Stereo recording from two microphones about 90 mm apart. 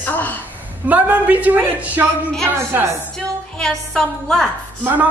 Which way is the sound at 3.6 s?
5° left (ahead or behind).